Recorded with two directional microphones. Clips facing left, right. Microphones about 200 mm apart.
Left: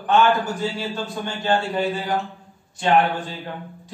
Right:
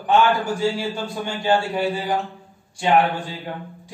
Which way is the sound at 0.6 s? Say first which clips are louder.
Right 3 dB; 10° right (ahead or behind).